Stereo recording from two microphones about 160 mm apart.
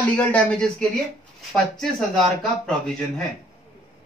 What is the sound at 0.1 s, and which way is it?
Speech, 10° left (ahead or behind).